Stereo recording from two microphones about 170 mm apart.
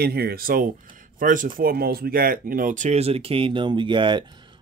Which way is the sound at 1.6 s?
60° right (ahead or behind).